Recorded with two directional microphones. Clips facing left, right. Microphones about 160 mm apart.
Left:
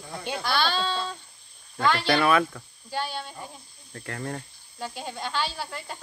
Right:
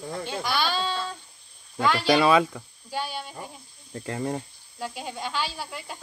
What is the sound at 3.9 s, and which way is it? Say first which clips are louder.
Speech: right 5 dB; 20° right (ahead or behind).